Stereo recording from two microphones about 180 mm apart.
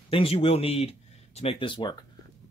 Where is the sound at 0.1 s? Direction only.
30° left (ahead or behind).